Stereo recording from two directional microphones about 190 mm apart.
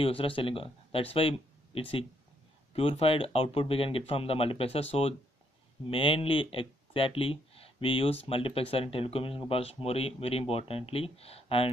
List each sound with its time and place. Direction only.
0.0 s speech: 30° left (ahead or behind)